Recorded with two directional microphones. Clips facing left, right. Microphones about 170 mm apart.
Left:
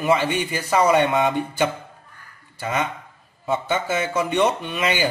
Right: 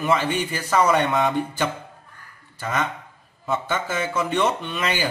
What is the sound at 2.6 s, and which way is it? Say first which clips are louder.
A man's voice: left 1 dB; 15° left (ahead or behind).